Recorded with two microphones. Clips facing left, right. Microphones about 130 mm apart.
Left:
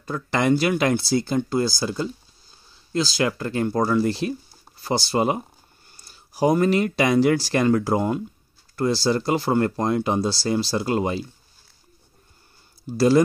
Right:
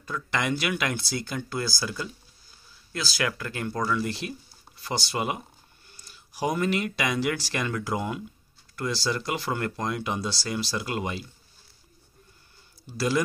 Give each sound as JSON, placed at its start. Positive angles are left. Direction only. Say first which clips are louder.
{"t": 0.0, "sound": "speech", "louder": "left 7 dB", "side_deg": 35}
{"t": 12.9, "sound": "speech", "louder": "left 9 dB", "side_deg": 35}